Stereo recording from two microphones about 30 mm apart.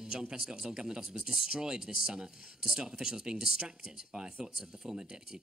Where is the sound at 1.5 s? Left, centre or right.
Right.